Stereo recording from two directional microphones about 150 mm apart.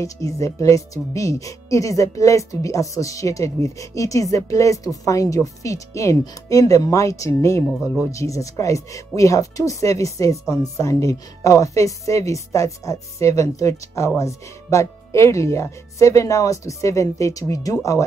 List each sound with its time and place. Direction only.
0.0 s speech: 20° left (ahead or behind)